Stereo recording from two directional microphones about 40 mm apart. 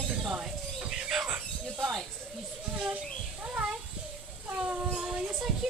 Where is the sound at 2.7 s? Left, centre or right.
Right.